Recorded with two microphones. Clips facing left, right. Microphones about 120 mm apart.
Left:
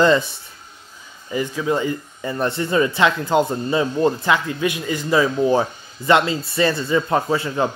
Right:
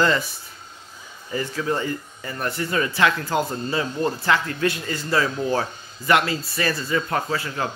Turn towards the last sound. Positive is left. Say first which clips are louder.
# left 5 dB
turn(degrees=25)  # may be behind; listen again after turning